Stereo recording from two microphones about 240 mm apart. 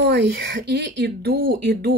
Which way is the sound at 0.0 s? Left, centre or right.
Right.